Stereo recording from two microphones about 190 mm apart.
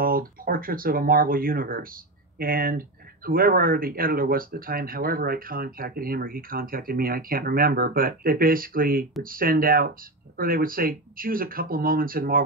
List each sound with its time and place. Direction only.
0.0 s speech: 50° right (ahead or behind)